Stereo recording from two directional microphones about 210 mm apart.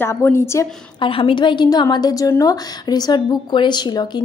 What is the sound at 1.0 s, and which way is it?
A woman's voice, 25° left (ahead or behind).